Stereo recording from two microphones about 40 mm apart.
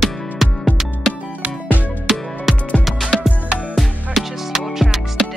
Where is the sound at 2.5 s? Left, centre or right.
Centre.